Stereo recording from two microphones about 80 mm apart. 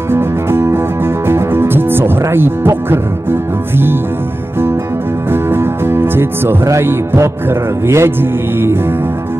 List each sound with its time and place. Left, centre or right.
0.1 s music: right
5.3 s music: right